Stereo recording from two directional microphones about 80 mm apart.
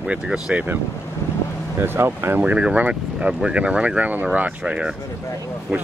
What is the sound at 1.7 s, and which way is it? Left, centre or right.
Speech, right.